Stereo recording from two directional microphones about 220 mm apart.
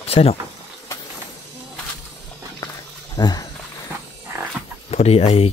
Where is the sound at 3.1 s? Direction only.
15° left (ahead or behind).